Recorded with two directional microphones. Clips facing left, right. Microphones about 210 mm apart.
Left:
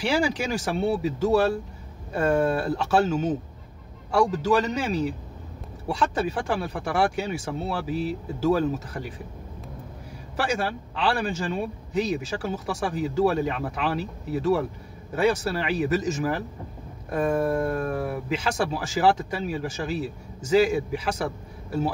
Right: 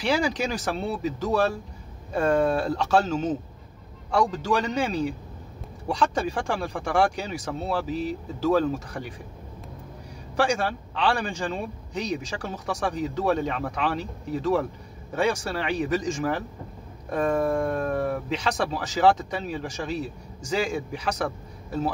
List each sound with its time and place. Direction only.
0.0 s a man's voice: 10° left (ahead or behind)
10.3 s a man's voice: 5° left (ahead or behind)